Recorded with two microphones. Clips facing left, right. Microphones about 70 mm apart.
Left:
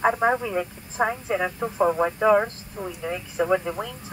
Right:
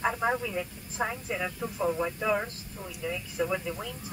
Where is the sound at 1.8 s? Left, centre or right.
Left.